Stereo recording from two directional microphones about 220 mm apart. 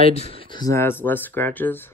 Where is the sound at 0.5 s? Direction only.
15° left (ahead or behind).